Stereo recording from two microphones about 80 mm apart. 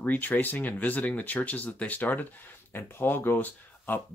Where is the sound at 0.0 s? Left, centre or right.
Left.